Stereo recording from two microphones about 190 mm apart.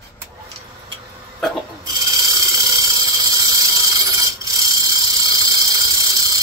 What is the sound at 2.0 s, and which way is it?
Squeal, 20° right (ahead or behind).